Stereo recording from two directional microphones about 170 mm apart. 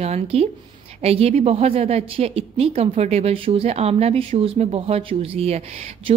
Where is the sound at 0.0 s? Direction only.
35° right (ahead or behind).